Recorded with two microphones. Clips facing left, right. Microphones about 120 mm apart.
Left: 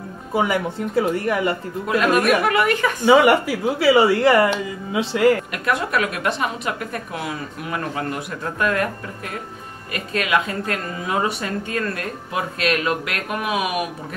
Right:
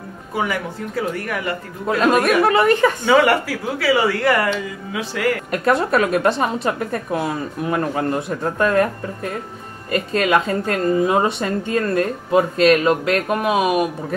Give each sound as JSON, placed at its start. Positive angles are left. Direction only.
{"t": 0.4, "sound": "speech", "side_deg": 25}
{"t": 1.9, "sound": "a woman's voice", "side_deg": -30}
{"t": 3.1, "sound": "speech", "side_deg": 15}
{"t": 5.5, "sound": "a woman's voice", "side_deg": -35}
{"t": 9.9, "sound": "a woman's voice", "side_deg": -35}